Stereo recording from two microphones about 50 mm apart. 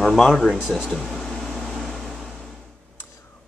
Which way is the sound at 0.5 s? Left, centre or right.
Centre.